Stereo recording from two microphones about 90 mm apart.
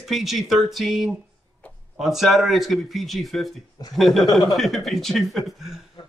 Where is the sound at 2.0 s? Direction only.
Centre (ahead or behind).